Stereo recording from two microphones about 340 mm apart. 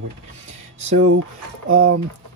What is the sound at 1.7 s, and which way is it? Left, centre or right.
Speech, right.